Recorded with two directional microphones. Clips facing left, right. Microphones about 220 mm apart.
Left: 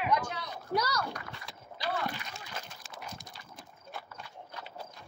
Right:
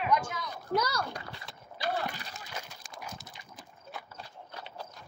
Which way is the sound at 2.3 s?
Centre (ahead or behind).